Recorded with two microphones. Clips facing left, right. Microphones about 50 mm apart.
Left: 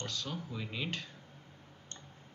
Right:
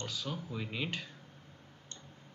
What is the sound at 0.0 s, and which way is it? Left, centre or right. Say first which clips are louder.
Speech: even; centre.